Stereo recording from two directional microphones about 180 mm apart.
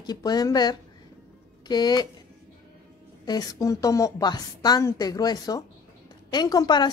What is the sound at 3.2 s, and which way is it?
A woman's voice, 20° left (ahead or behind).